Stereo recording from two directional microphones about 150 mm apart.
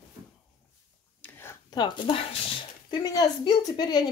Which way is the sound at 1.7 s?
30° left (ahead or behind).